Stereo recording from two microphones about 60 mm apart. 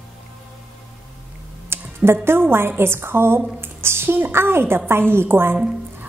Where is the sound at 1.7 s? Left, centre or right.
Right.